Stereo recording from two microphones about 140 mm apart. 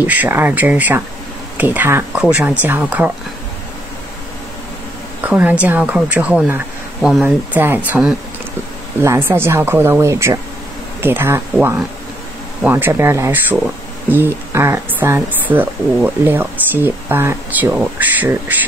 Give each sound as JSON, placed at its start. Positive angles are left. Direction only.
{"t": 0.0, "sound": "speech", "side_deg": -10}
{"t": 5.2, "sound": "speech", "side_deg": -10}
{"t": 7.2, "sound": "speech", "side_deg": -15}
{"t": 12.6, "sound": "speech", "side_deg": -15}